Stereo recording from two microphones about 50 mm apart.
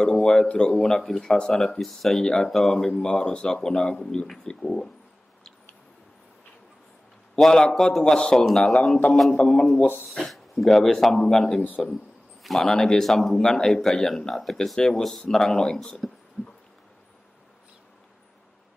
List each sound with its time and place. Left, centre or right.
0.0 s speech: centre
7.3 s speech: centre
10.0 s speech: centre